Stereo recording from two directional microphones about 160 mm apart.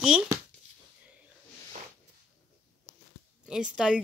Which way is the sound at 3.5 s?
5° right (ahead or behind).